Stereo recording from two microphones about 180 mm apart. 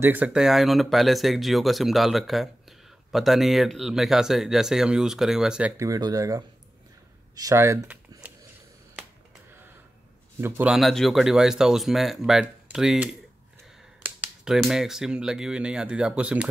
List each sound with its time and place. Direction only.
0.0 s speech: 10° right (ahead or behind)
5.9 s speech: 20° right (ahead or behind)
10.4 s speech: 5° right (ahead or behind)